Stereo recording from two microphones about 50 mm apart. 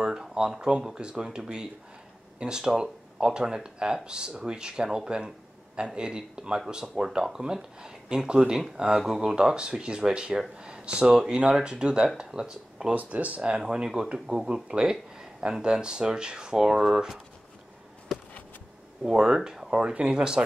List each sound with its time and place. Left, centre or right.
0.0 s speech: centre
12.9 s speech: right
13.6 s speech: centre
19.0 s speech: centre